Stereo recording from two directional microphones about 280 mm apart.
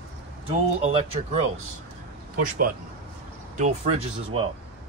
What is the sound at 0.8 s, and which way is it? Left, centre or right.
Speech, centre.